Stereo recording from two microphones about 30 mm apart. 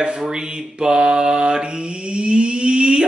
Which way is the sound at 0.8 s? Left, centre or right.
Right.